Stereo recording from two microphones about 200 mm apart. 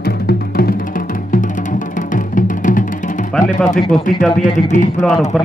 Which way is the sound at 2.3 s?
40° left (ahead or behind).